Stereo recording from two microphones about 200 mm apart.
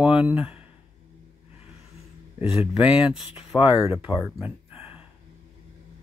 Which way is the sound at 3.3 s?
25° left (ahead or behind).